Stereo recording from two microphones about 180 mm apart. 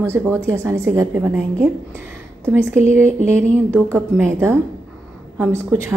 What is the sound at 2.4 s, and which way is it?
A woman's voice, 15° right (ahead or behind).